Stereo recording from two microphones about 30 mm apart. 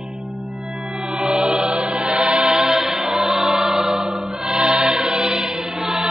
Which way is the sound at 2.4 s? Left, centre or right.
Centre.